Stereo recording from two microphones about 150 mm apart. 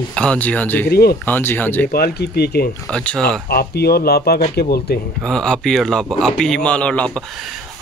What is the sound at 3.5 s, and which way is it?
Speech, 90° left.